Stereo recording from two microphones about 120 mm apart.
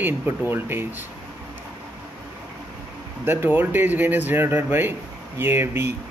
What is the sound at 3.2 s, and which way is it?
Speech, 20° right (ahead or behind).